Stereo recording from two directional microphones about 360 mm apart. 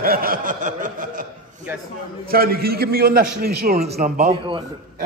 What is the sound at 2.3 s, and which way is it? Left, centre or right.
A man's voice, right.